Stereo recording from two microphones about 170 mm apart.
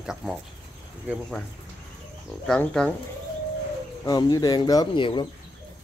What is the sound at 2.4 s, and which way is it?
Speech, 5° left (ahead or behind).